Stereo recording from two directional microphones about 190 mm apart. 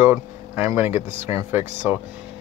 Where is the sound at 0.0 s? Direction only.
10° right (ahead or behind).